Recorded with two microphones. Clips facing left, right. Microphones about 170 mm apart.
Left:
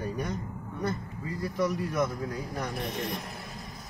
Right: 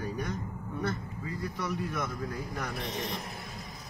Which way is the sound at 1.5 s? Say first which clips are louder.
Left 8 dB; 45° left (ahead or behind).